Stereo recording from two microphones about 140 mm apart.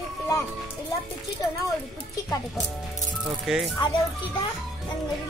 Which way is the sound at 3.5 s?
5° right (ahead or behind).